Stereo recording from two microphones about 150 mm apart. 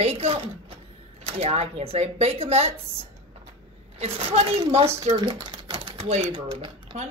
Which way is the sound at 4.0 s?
40° right (ahead or behind).